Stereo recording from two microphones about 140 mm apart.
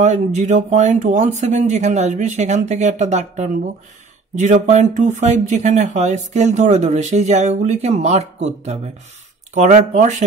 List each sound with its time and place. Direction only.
0.0 s speech: 55° right (ahead or behind)